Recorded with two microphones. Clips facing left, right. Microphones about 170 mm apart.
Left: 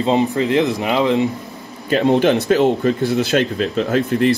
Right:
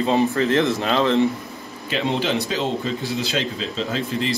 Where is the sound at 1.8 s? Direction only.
50° left (ahead or behind).